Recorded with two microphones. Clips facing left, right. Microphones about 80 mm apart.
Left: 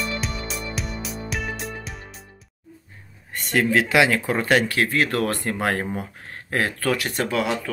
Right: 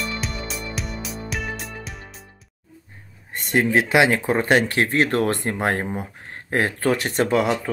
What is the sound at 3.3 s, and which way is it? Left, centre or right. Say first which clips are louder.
Speech: right 1 dB; right.